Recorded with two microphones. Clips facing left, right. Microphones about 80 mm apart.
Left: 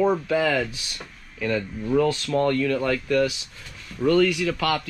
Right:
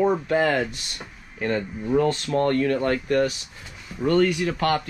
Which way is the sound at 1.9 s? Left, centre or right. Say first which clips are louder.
Even; centre.